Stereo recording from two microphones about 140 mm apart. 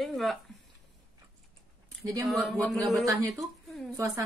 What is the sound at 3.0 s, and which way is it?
A woman's voice, 25° right (ahead or behind).